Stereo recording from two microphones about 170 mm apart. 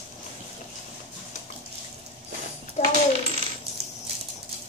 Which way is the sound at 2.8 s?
40° left (ahead or behind).